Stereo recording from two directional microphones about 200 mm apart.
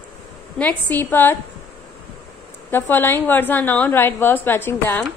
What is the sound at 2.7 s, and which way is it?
A woman's voice, 10° left (ahead or behind).